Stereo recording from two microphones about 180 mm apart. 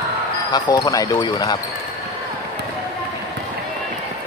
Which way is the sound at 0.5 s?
20° left (ahead or behind).